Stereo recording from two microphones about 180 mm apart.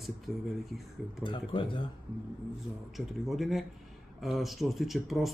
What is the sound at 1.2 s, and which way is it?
Speech, 25° left (ahead or behind).